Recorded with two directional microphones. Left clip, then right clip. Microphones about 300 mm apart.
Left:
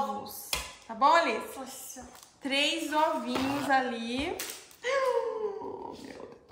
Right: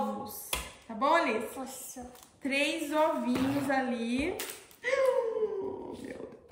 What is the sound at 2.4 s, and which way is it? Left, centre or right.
A woman's voice, centre.